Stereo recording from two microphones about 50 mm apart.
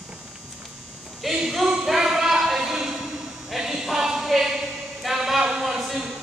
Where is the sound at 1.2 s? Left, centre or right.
Centre.